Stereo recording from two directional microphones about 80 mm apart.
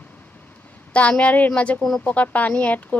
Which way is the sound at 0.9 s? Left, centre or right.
Centre.